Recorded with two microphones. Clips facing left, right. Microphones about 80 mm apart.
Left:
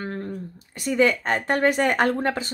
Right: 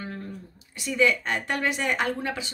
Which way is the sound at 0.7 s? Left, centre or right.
Left.